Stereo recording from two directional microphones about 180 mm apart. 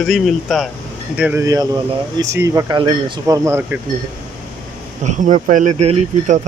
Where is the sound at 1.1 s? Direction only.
10° right (ahead or behind).